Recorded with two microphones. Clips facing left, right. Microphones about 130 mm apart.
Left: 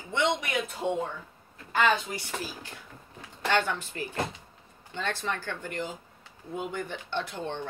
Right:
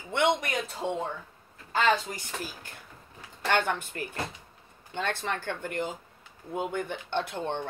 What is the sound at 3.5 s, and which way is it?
Speech, 50° right (ahead or behind).